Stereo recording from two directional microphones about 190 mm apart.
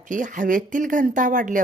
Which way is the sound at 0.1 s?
45° right (ahead or behind).